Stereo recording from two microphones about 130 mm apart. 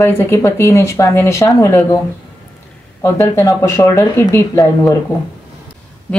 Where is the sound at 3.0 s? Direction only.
20° left (ahead or behind).